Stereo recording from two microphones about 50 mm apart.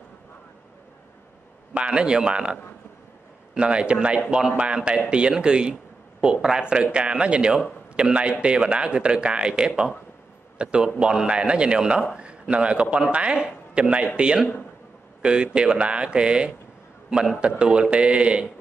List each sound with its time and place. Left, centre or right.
1.7 s a man's voice: right